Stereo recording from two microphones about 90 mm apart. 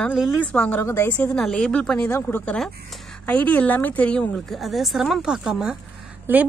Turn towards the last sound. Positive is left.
turn(degrees=-25)  # may be behind; listen again after turning